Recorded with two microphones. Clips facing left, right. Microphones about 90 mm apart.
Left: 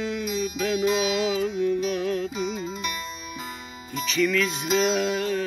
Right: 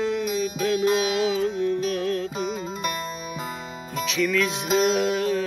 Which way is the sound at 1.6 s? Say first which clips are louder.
Even; 5° left (ahead or behind).